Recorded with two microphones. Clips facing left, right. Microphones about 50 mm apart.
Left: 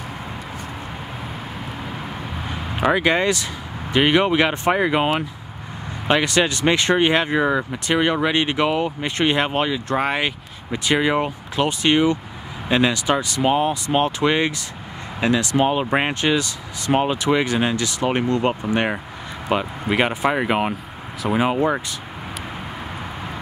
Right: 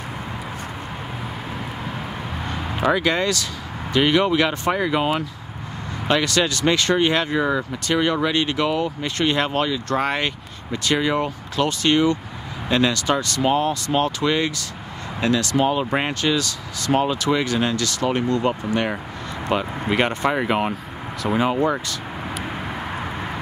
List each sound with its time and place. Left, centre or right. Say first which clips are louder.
2.5 s speech: left 1 dB; centre
19.5 s speech: left 1 dB; centre